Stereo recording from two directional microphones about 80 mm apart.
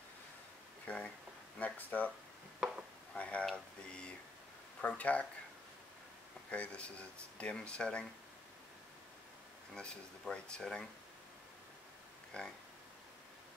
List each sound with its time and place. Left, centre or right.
0.8 s speech: centre
3.2 s a sound: centre
3.4 s speech: centre
6.5 s speech: centre
9.8 s speech: centre
12.4 s speech: centre